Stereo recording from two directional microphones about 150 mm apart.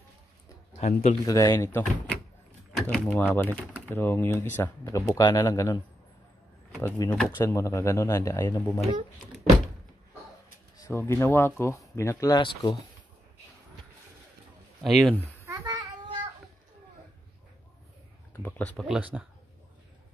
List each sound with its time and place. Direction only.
0.7 s speech: 45° left (ahead or behind)
1.2 s speech: 20° left (ahead or behind)
6.8 s speech: 15° left (ahead or behind)
10.8 s speech: 20° left (ahead or behind)
14.8 s speech: centre (ahead or behind)
15.4 s child singing: 25° right (ahead or behind)
18.3 s a sound: 15° left (ahead or behind)
18.8 s speech: 5° right (ahead or behind)